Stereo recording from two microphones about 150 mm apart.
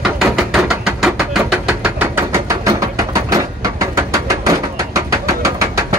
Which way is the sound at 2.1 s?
20° right (ahead or behind).